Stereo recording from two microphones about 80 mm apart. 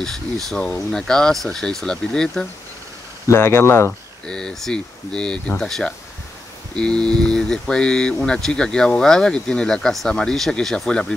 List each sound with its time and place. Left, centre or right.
0.0 s speech: centre
3.3 s speech: left
4.3 s speech: centre